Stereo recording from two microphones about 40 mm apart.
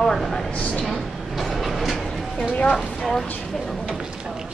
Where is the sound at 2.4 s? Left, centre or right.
Left.